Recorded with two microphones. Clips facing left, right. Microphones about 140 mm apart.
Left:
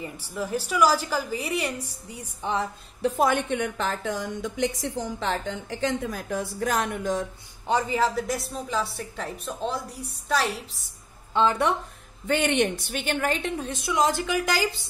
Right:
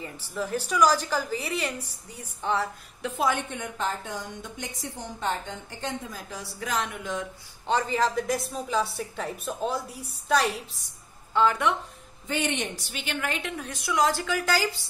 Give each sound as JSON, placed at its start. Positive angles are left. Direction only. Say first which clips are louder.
{"t": 0.0, "sound": "a woman's voice", "louder": "left 1 dB", "side_deg": 10}
{"t": 3.0, "sound": "a woman's voice", "louder": "left 6 dB", "side_deg": 35}
{"t": 3.3, "sound": "a woman's voice", "louder": "left 4 dB", "side_deg": 65}
{"t": 7.6, "sound": "a woman's voice", "louder": "left 1 dB", "side_deg": 10}
{"t": 11.3, "sound": "a woman's voice", "louder": "left 1 dB", "side_deg": 30}
{"t": 12.3, "sound": "speech", "louder": "left 6 dB", "side_deg": 60}
{"t": 12.8, "sound": "a woman's voice", "louder": "left 5 dB", "side_deg": 45}